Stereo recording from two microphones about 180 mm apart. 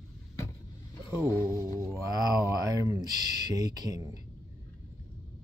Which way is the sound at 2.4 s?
20° right (ahead or behind).